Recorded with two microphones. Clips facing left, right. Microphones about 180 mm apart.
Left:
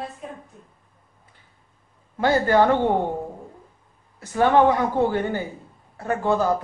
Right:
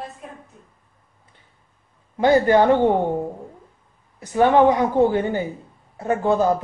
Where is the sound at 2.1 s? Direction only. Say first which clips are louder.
Right 4 dB; 15° right (ahead or behind).